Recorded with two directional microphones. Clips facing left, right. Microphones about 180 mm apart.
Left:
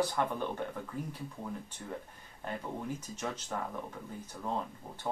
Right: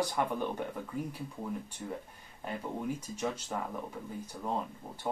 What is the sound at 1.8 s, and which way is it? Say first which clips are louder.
Speech: right 2 dB; 15° right (ahead or behind).